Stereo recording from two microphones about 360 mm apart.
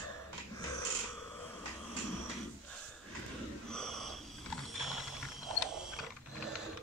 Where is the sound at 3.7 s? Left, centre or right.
Centre.